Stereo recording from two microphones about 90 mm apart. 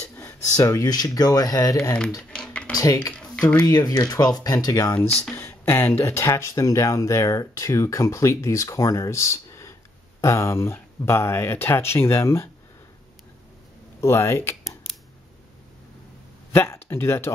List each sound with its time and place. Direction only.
0.1 s speech: 40° left (ahead or behind)
2.3 s a sound: 10° left (ahead or behind)
2.7 s speech: 40° left (ahead or behind)
3.1 s speech: 15° left (ahead or behind)
3.6 s speech: 45° left (ahead or behind)
5.3 s speech: 25° left (ahead or behind)
14.0 s speech: 30° left (ahead or behind)
16.5 s speech: 25° left (ahead or behind)